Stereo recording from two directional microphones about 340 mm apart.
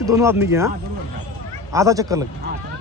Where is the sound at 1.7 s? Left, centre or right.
Centre.